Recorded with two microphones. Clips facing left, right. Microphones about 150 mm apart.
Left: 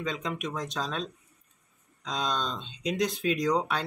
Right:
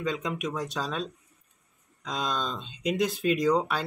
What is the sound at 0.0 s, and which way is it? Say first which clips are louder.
Speech: right 2 dB; 10° right (ahead or behind).